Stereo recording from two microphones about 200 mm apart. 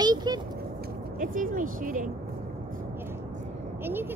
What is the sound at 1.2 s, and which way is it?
Speech, 40° right (ahead or behind).